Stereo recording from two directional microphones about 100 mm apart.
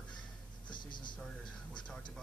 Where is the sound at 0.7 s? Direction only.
50° left (ahead or behind).